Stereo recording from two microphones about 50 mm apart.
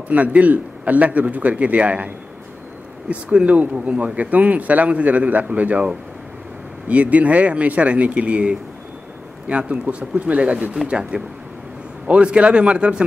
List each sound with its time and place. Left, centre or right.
0.1 s speech: right
3.1 s speech: right